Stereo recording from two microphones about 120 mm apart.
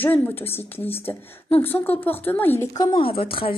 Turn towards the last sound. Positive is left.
turn(degrees=50)  # may be behind; listen again after turning